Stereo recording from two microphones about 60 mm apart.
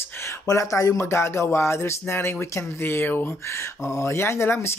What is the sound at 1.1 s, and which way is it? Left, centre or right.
Speech, left.